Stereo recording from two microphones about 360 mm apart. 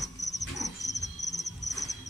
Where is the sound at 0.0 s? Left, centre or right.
Centre.